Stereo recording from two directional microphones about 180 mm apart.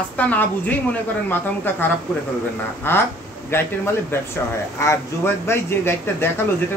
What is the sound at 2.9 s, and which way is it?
A man's voice, 10° left (ahead or behind).